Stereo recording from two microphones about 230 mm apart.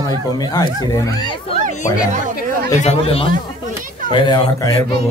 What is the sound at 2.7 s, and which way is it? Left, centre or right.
Speech, left.